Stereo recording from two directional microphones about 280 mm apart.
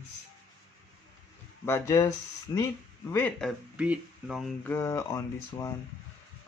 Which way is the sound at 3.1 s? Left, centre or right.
Centre.